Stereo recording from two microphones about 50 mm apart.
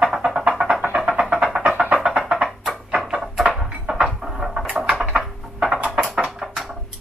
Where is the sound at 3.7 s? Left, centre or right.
Centre.